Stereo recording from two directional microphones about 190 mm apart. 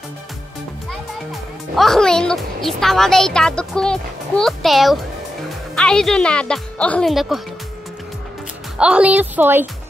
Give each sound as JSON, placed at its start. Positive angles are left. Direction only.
{"t": 1.3, "sound": "speech", "side_deg": 0}
{"t": 8.7, "sound": "a woman's voice", "side_deg": -5}